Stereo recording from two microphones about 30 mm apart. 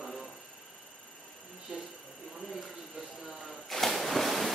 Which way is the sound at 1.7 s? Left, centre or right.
Right.